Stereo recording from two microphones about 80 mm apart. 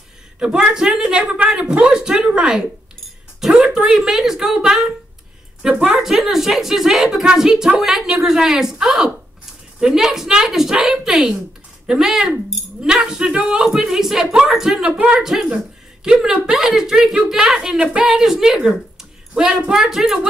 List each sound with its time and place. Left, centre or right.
0.4 s a woman's voice: centre
6.0 s a woman's voice: centre